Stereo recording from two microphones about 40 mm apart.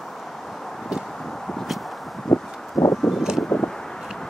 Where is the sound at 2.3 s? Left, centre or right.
Left.